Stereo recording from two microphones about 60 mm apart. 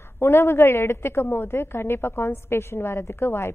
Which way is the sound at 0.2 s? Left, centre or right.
Left.